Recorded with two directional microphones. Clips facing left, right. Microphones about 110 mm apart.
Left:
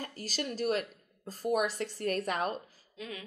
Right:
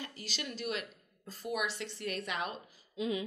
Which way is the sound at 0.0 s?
40° left (ahead or behind).